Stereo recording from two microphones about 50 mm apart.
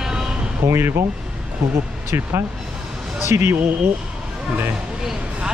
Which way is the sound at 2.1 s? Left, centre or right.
Right.